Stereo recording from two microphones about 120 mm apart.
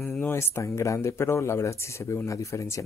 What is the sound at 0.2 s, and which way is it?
Speech, 20° left (ahead or behind).